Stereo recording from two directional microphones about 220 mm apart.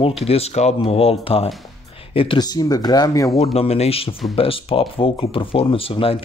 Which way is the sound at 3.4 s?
30° left (ahead or behind).